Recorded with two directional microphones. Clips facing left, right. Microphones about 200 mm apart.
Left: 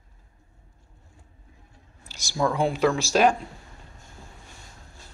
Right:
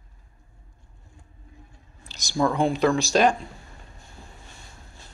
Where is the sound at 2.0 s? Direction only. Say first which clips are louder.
Right 2 dB; 10° left (ahead or behind).